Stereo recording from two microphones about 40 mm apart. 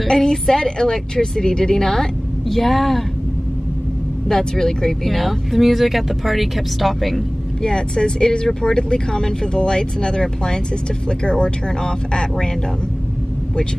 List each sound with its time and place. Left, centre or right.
0.0 s a woman's voice: centre
4.3 s speech: centre
7.6 s speech: centre